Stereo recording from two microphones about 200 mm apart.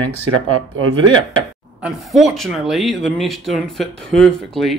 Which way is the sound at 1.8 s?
5° right (ahead or behind).